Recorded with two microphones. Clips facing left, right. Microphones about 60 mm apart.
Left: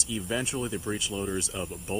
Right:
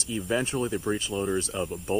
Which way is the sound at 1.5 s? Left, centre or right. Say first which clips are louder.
Right 4 dB; right.